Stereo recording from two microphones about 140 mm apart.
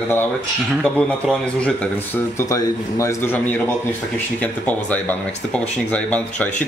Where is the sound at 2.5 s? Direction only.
20° left (ahead or behind).